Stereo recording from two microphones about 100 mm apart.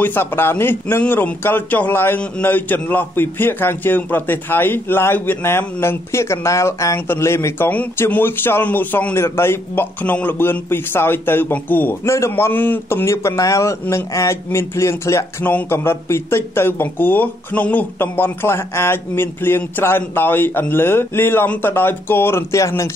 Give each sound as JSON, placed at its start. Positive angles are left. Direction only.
{"t": 0.0, "sound": "speech", "side_deg": 20}